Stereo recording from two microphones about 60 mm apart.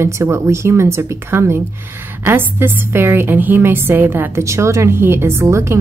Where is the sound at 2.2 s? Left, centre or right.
Right.